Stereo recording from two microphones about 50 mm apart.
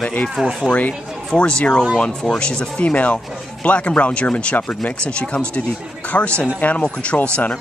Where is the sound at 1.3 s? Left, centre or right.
Centre.